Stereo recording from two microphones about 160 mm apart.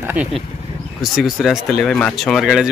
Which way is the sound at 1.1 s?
Centre (ahead or behind).